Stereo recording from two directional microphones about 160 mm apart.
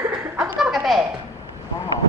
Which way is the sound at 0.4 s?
Centre (ahead or behind).